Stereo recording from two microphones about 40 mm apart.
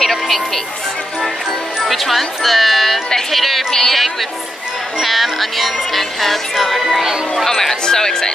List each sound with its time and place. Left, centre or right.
0.0 s music: centre
1.8 s music: centre
3.7 s a sound: centre
5.0 s music: centre
7.4 s chatter: centre